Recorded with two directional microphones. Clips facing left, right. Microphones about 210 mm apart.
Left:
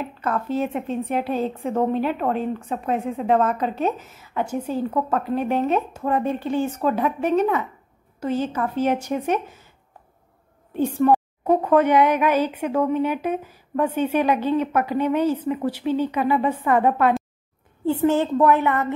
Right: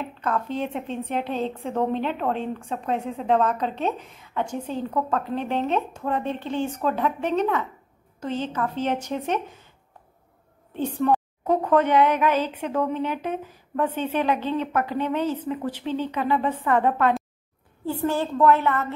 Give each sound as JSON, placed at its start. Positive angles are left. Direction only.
{"t": 0.0, "sound": "a woman's voice", "side_deg": 5}
{"t": 10.7, "sound": "a woman's voice", "side_deg": 10}
{"t": 17.8, "sound": "a woman's voice", "side_deg": 20}